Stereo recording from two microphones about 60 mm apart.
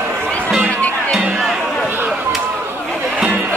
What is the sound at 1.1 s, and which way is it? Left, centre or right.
Music, centre.